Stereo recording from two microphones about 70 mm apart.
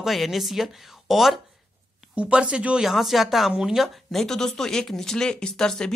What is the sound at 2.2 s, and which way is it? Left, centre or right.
Speech, centre.